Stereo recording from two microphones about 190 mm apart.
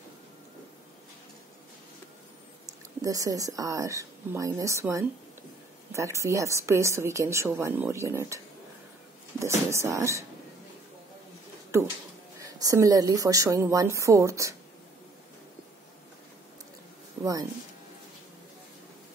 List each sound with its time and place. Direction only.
3.0 s a woman's voice: 20° right (ahead or behind)
9.4 s a woman's voice: 15° right (ahead or behind)
12.4 s a woman's voice: 20° right (ahead or behind)
17.2 s speech: 20° right (ahead or behind)